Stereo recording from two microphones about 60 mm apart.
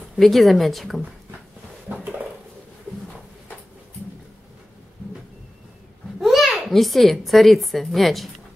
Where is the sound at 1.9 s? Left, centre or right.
Right.